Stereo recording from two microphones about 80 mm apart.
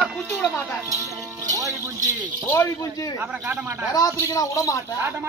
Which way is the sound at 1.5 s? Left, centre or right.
Right.